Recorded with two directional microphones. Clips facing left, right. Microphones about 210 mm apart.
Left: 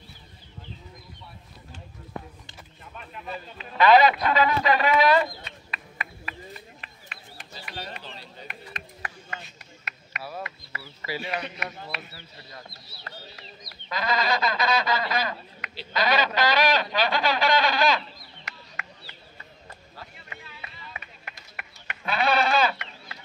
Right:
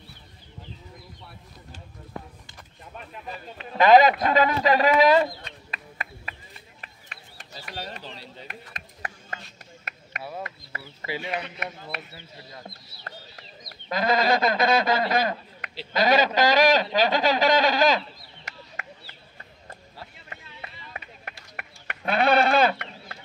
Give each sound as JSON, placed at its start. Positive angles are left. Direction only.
{"t": 3.5, "sound": "a man's voice", "side_deg": -45}
{"t": 5.1, "sound": "chicken", "side_deg": -35}
{"t": 7.6, "sound": "a sound", "side_deg": -40}
{"t": 11.1, "sound": "speech", "side_deg": -20}
{"t": 13.0, "sound": "sheep", "side_deg": -45}
{"t": 14.3, "sound": "a man's voice", "side_deg": -50}
{"t": 15.1, "sound": "a sound", "side_deg": -50}
{"t": 15.9, "sound": "a man's voice", "side_deg": -45}
{"t": 21.5, "sound": "sheep", "side_deg": -55}